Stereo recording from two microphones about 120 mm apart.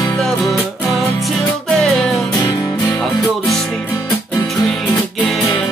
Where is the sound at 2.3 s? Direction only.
35° left (ahead or behind).